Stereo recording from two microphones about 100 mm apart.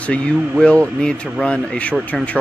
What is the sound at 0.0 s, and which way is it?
Speech, 10° left (ahead or behind).